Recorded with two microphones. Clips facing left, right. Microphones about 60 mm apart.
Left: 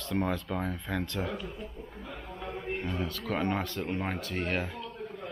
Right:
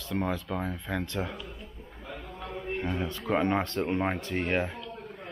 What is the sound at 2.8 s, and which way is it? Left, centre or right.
Speech, right.